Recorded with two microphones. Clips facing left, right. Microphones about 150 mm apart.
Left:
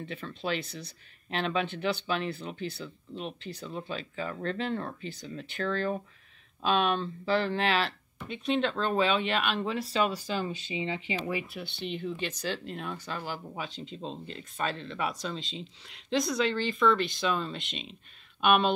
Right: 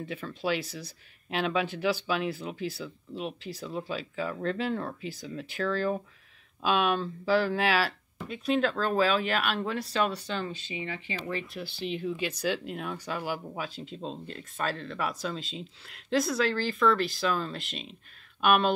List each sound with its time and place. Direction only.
0.0 s speech: 5° right (ahead or behind)
10.4 s speech: 20° left (ahead or behind)
11.6 s speech: centre (ahead or behind)